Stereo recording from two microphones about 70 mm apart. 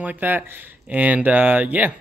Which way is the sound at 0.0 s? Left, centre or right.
Right.